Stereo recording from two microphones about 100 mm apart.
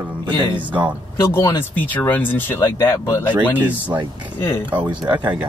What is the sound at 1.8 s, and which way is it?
Speech, 20° left (ahead or behind).